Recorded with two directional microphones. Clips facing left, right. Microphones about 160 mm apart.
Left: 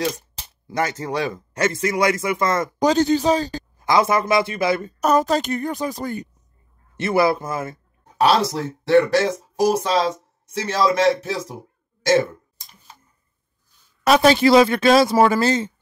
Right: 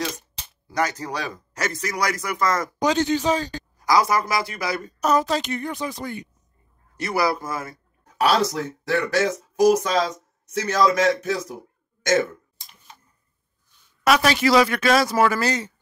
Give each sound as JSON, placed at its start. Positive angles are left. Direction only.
{"t": 0.7, "sound": "speech", "side_deg": 25}
{"t": 2.9, "sound": "speech", "side_deg": 40}
{"t": 5.0, "sound": "a woman's voice", "side_deg": 50}
{"t": 7.0, "sound": "speech", "side_deg": 25}
{"t": 14.0, "sound": "speech", "side_deg": 30}